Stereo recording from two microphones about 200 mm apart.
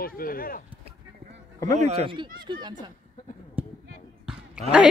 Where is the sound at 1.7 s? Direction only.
35° right (ahead or behind).